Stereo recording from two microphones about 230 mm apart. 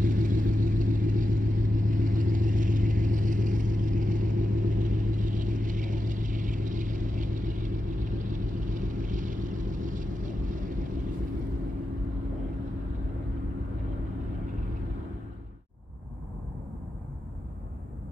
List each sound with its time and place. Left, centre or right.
0.0 s vehicle: right